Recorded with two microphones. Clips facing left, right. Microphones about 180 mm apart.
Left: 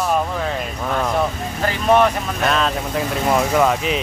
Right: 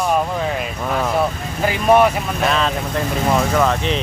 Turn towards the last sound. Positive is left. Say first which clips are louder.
# even
turn(degrees=5)  # may be behind; listen again after turning